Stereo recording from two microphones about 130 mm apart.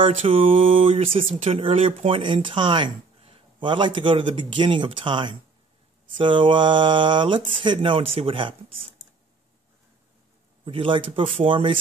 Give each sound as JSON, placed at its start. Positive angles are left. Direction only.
{"t": 0.0, "sound": "speech", "side_deg": -45}
{"t": 10.6, "sound": "speech", "side_deg": -40}